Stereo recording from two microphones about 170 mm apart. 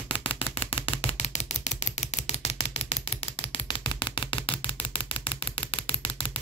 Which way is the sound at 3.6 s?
25° left (ahead or behind).